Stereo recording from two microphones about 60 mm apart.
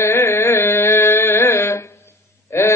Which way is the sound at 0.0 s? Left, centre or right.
Left.